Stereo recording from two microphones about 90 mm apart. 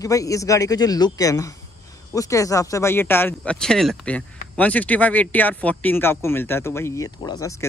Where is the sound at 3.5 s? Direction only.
5° left (ahead or behind).